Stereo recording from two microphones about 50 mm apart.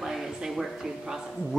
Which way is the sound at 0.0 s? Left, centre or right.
Centre.